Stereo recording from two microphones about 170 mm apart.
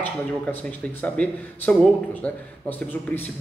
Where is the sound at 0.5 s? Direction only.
10° left (ahead or behind).